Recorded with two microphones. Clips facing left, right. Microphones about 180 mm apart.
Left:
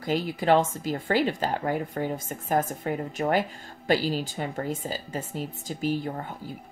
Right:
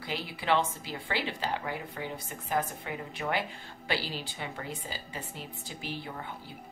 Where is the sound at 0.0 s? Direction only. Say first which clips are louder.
Left 10 dB; 45° left (ahead or behind).